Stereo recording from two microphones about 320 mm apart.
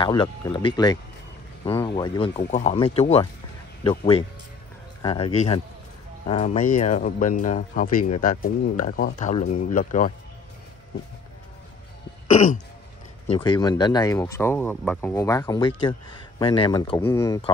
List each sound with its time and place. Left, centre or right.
0.0 s a man's voice: centre
13.3 s speech: centre